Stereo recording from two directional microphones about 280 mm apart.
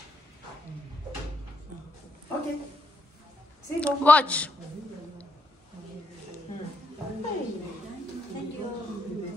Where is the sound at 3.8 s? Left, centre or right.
Centre.